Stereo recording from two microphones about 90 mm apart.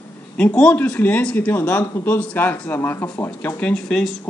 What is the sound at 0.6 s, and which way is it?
A man's voice, 10° left (ahead or behind).